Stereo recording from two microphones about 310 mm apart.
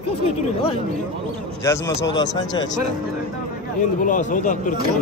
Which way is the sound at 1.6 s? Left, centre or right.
Centre.